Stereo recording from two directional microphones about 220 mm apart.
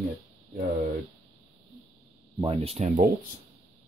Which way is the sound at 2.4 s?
25° right (ahead or behind).